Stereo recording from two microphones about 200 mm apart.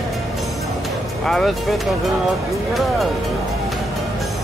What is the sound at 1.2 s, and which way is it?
Music, centre (ahead or behind).